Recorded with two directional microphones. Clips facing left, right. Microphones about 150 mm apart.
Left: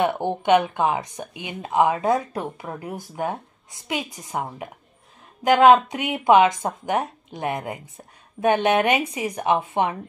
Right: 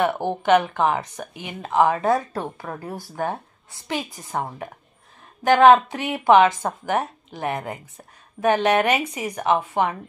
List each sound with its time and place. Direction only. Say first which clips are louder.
0.0 s a woman's voice: even; 20° left (ahead or behind)
5.5 s a woman's voice: right 1 dB; 15° left (ahead or behind)